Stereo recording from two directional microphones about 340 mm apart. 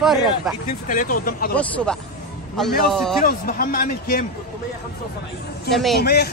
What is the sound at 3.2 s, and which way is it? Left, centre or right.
Speech, left.